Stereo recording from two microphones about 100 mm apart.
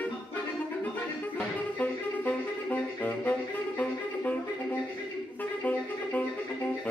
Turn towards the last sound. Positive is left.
turn(degrees=15)  # may be behind; listen again after turning